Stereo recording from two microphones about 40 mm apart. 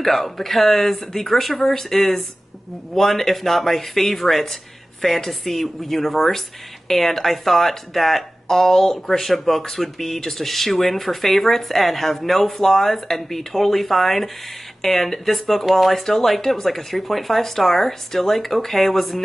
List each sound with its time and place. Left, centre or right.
0.0 s speech: centre